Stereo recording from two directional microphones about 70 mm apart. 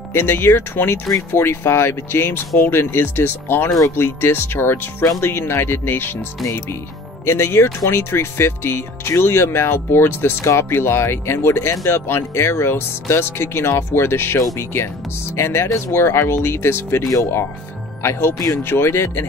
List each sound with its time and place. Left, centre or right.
0.1 s speech: left
7.2 s speech: left
17.0 s speech: left
18.6 s speech: left